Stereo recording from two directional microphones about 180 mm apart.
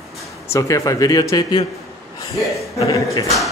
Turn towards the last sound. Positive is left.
turn(degrees=20)  # may be behind; listen again after turning